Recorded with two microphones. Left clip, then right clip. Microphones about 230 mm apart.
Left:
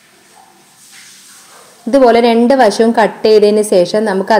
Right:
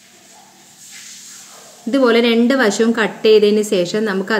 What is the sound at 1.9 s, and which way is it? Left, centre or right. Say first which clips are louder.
A woman's voice: left 6 dB; centre.